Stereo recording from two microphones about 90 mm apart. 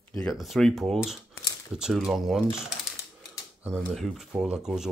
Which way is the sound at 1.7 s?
5° right (ahead or behind).